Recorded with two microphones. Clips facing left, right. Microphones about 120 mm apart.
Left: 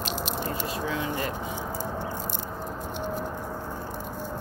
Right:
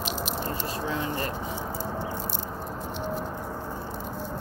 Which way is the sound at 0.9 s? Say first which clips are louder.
Right 1 dB; 40° right (ahead or behind).